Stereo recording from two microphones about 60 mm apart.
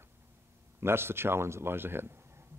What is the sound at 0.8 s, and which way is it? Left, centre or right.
Speech, right.